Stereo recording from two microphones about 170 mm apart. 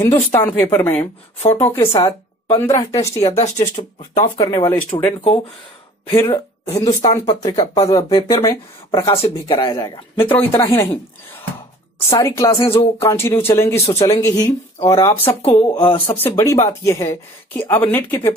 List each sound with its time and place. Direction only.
0.0 s speech: 10° left (ahead or behind)
2.0 s a sound: 30° left (ahead or behind)
2.7 s speech: 20° left (ahead or behind)
3.3 s speech: 40° left (ahead or behind)
4.4 s speech: 25° left (ahead or behind)
6.6 s speech: 40° left (ahead or behind)
7.2 s speech: 25° left (ahead or behind)
7.5 s speech: 35° left (ahead or behind); by 10.9 s 15° left (ahead or behind)
12.1 s speech: 15° left (ahead or behind)
15.4 s speech: 30° left (ahead or behind)
16.1 s speech: 15° left (ahead or behind)